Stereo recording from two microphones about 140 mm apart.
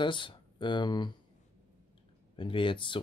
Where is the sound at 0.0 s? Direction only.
35° left (ahead or behind).